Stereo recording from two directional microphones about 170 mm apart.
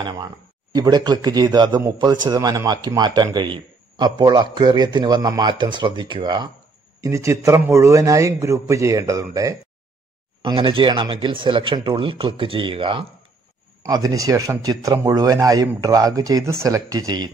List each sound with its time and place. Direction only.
0.0 s a man's voice: 25° right (ahead or behind)